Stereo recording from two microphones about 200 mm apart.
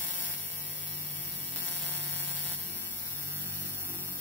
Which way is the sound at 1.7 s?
10° left (ahead or behind).